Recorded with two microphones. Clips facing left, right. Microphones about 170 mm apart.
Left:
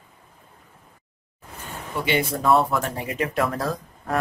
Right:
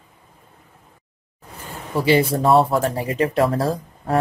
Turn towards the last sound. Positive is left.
turn(degrees=-30)  # may be behind; listen again after turning